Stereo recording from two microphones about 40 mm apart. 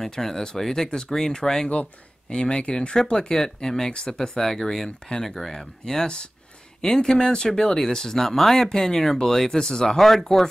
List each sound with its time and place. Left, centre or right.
0.0 s speech: centre
9.9 s speech: centre